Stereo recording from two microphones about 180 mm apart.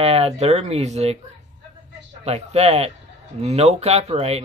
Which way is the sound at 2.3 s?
35° right (ahead or behind).